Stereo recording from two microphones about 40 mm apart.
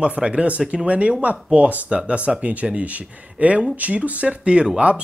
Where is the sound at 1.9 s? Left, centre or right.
Right.